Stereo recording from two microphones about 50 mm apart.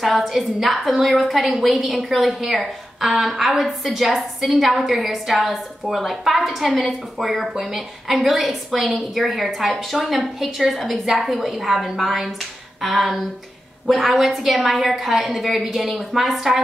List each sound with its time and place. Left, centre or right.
0.0 s a woman's voice: centre